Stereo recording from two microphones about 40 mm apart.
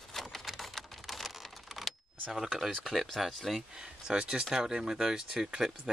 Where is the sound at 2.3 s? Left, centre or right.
Centre.